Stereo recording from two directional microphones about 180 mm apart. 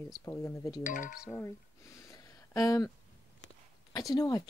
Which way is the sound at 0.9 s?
50° left (ahead or behind).